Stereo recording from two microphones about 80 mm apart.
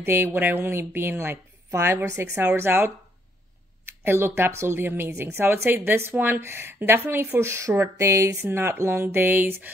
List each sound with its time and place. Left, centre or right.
0.0 s speech: right